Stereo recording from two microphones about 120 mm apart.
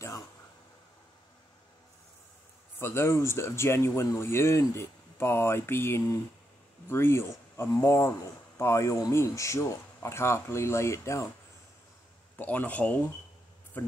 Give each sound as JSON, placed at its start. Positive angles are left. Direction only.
{"t": 2.8, "sound": "speech", "side_deg": 20}
{"t": 12.4, "sound": "speech", "side_deg": 15}